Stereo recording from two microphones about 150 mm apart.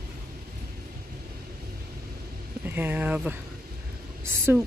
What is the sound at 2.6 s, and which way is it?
Speech, 10° right (ahead or behind).